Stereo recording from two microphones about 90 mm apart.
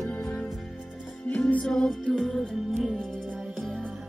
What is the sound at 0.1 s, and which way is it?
Music, 15° left (ahead or behind).